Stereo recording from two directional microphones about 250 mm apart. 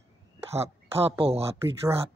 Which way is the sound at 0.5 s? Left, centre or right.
Right.